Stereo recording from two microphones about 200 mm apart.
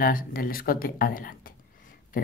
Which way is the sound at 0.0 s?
45° left (ahead or behind).